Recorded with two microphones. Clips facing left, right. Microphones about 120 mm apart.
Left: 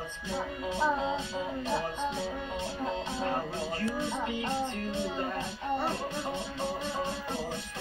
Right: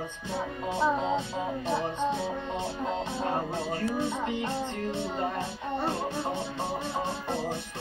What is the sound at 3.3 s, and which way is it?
Music, 25° right (ahead or behind).